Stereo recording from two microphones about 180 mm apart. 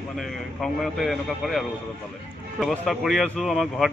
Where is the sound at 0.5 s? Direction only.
Centre (ahead or behind).